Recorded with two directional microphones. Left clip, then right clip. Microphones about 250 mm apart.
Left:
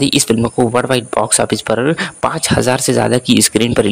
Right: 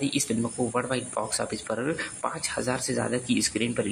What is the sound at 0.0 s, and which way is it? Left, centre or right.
Speech, left.